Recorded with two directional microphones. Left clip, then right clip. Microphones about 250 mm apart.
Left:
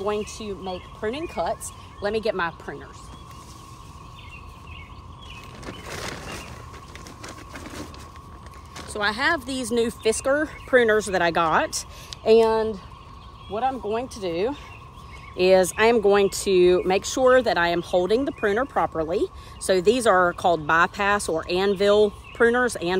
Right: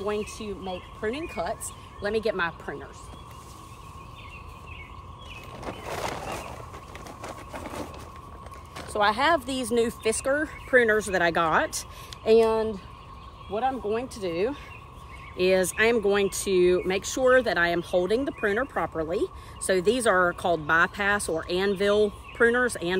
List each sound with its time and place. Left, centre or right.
0.3 s speech: centre
5.6 s a sound: centre
8.9 s speech: centre
15.3 s speech: left